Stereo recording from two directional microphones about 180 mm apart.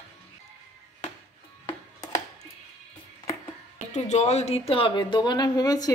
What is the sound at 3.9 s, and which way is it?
Speech, 40° left (ahead or behind).